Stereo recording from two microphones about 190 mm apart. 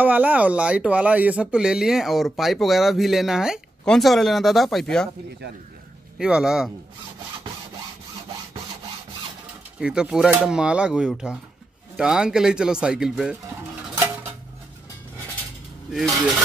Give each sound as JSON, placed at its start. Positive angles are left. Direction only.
{"t": 0.0, "sound": "speech", "side_deg": -10}
{"t": 6.1, "sound": "speech", "side_deg": -5}
{"t": 9.8, "sound": "speech", "side_deg": -5}